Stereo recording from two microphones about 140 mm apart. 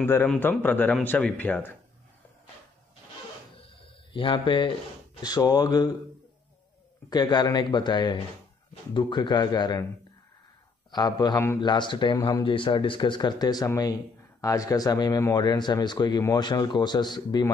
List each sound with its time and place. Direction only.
0.0 s speech: 15° left (ahead or behind)
4.1 s a man's voice: 35° left (ahead or behind)
7.1 s a man's voice: 30° left (ahead or behind)
10.9 s a man's voice: 30° left (ahead or behind)